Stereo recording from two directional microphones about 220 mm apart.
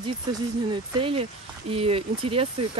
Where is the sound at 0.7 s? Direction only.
25° right (ahead or behind).